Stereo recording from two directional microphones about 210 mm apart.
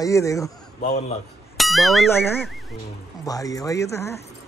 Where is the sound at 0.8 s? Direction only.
30° left (ahead or behind).